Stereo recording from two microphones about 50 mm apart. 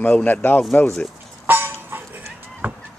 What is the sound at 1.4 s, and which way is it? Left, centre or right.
Music, right.